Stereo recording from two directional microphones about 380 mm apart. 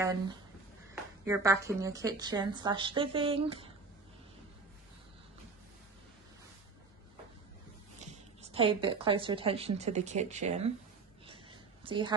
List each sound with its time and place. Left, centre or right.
1.2 s a woman's voice: centre
8.4 s a woman's voice: centre
11.8 s a woman's voice: centre